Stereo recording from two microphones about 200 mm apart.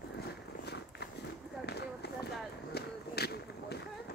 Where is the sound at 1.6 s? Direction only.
55° left (ahead or behind).